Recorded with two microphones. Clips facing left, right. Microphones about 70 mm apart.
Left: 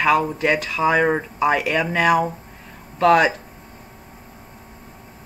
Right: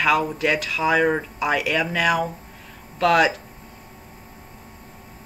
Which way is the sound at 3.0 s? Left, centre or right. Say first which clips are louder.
Left 3 dB; left.